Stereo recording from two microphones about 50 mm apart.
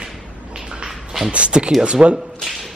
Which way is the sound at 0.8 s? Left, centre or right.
Centre.